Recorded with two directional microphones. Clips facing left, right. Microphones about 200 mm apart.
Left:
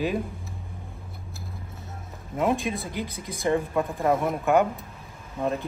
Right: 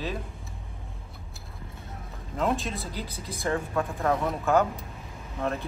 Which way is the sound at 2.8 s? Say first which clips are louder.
Left 4 dB; 50° left (ahead or behind).